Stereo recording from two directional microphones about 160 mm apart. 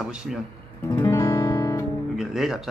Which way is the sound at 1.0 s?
20° left (ahead or behind).